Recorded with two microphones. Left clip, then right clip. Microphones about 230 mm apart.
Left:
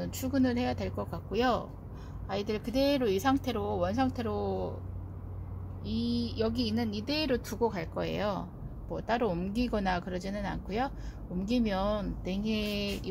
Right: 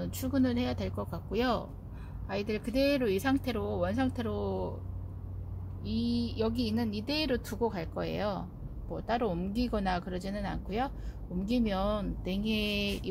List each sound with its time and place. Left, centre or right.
0.0 s speech: centre
5.9 s speech: centre